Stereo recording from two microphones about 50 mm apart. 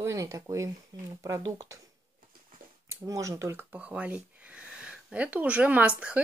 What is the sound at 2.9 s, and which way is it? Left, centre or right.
Speech, right.